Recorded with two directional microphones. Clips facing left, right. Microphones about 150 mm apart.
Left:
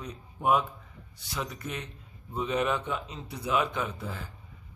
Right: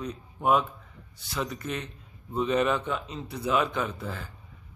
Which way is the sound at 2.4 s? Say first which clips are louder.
Right 3 dB; 10° left (ahead or behind).